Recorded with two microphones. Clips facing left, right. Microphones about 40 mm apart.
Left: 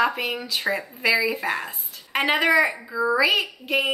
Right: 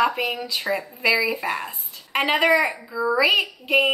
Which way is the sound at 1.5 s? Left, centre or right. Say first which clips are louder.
Even; centre.